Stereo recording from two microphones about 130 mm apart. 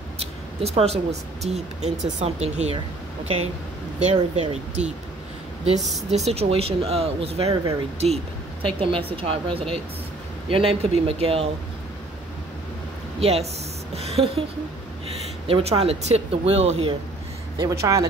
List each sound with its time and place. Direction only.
0.2 s speech: 50° right (ahead or behind)
4.0 s speech: 60° right (ahead or behind)
5.8 s speech: centre (ahead or behind)
6.0 s speech: 55° right (ahead or behind)
8.6 s speech: 45° right (ahead or behind)
13.2 s speech: 55° right (ahead or behind)
13.9 s a sound: 50° right (ahead or behind)
15.0 s speech: 50° right (ahead or behind)
17.6 s speech: 25° right (ahead or behind)